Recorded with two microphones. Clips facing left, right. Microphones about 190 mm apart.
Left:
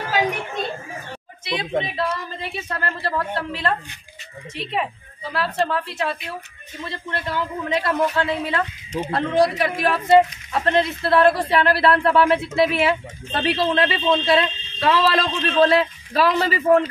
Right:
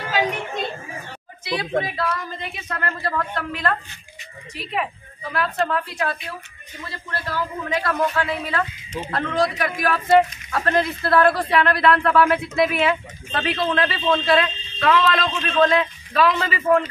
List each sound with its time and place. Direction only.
1.5 s a man's voice: 20° left (ahead or behind)